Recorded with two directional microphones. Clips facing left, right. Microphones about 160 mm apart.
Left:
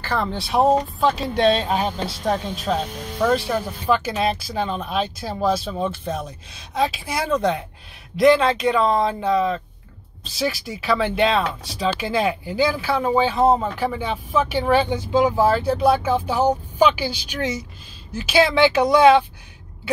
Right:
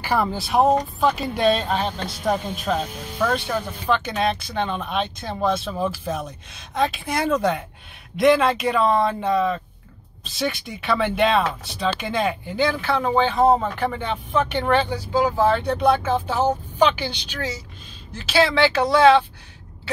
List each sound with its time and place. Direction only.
0.0 s speech: 10° right (ahead or behind); by 14.9 s 5° left (ahead or behind)
14.9 s speech: 20° left (ahead or behind)
15.4 s speech: 5° left (ahead or behind)
17.4 s speech: 20° left (ahead or behind)